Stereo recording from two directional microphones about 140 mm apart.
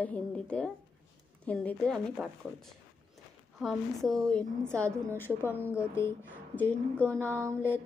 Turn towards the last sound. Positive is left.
turn(degrees=-20)  # may be behind; listen again after turning